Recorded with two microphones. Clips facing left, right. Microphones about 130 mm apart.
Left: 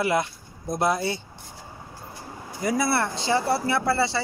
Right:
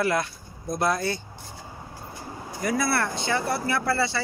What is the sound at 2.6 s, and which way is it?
Speech, 25° left (ahead or behind).